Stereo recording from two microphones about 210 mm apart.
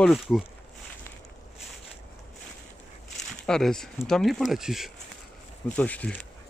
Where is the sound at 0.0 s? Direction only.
Centre (ahead or behind).